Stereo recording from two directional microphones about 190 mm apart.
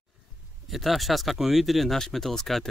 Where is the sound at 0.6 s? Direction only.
Centre (ahead or behind).